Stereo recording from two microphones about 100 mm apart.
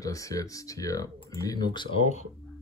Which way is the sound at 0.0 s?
35° left (ahead or behind).